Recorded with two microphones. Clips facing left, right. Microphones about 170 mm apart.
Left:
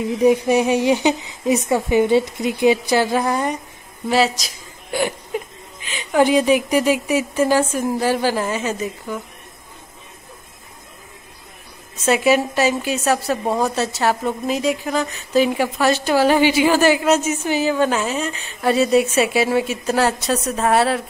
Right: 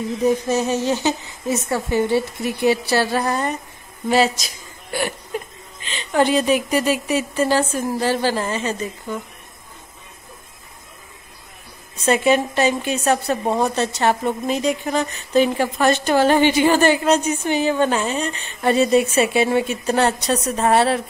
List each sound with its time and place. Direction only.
0.2 s a woman's voice: 15° left (ahead or behind)
4.9 s speech: 15° left (ahead or behind)
12.0 s a woman's voice: 5° left (ahead or behind)